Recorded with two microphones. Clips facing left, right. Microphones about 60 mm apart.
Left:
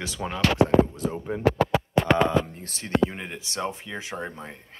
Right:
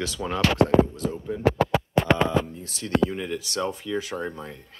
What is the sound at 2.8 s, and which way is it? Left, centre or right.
Speech, left.